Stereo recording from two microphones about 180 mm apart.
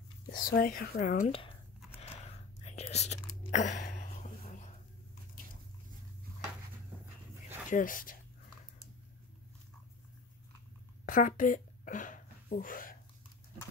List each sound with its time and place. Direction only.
0.3 s speech: 50° left (ahead or behind)
2.0 s whispering: 35° left (ahead or behind)
7.7 s speech: 50° left (ahead or behind)
11.1 s a sound: 45° left (ahead or behind)